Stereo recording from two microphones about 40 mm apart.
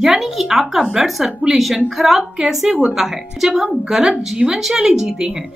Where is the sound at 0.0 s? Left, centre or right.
Centre.